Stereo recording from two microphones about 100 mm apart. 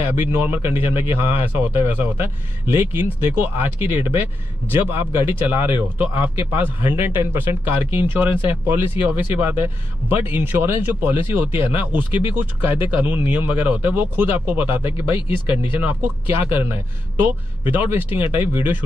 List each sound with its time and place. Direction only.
0.0 s speech: 20° right (ahead or behind)
14.9 s speech: 55° left (ahead or behind)
15.8 s speech: 20° right (ahead or behind)